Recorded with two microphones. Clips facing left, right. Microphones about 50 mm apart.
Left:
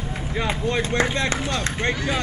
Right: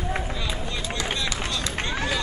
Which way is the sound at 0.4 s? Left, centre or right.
Left.